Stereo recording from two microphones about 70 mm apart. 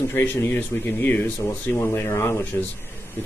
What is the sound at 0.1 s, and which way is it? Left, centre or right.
Speech, left.